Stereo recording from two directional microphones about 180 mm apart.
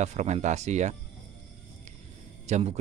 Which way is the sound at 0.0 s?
40° right (ahead or behind).